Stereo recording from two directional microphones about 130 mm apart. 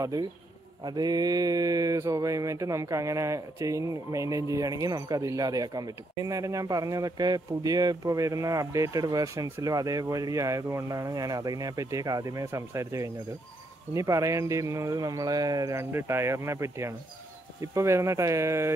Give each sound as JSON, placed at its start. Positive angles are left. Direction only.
{"t": 0.0, "sound": "mantra", "side_deg": -30}